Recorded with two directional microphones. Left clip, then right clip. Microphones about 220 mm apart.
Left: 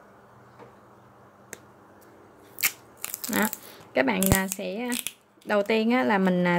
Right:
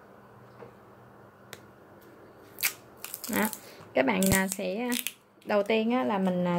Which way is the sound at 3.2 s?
15° left (ahead or behind).